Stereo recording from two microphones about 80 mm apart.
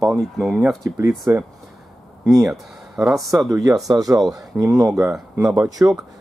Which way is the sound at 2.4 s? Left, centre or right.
Centre.